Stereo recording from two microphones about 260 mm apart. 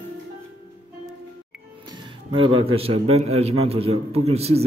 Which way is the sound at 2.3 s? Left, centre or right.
Centre.